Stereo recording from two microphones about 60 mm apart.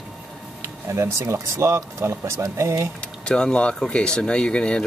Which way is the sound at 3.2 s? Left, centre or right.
Centre.